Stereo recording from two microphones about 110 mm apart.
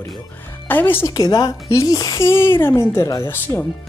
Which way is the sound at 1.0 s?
35° left (ahead or behind).